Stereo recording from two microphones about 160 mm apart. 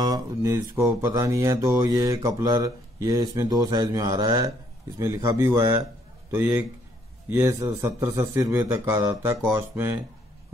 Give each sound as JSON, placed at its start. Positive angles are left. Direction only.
{"t": 0.0, "sound": "mantra", "side_deg": -20}
{"t": 6.3, "sound": "a man's voice", "side_deg": -15}